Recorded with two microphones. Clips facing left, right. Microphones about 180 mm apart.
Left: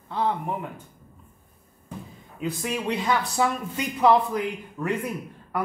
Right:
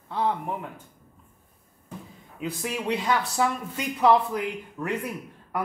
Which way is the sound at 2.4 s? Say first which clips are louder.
Left 2 dB; centre (ahead or behind).